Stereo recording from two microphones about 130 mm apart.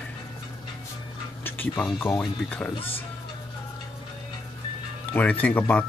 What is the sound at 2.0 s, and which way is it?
Speech, 15° left (ahead or behind).